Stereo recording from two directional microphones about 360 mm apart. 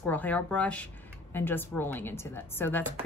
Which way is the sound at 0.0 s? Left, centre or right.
Centre.